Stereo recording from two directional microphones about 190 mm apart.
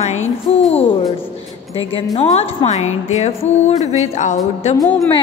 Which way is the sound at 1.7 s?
30° left (ahead or behind).